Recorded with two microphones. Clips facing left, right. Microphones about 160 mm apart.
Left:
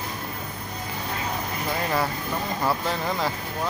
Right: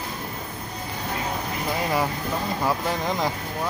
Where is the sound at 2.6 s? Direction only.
15° right (ahead or behind).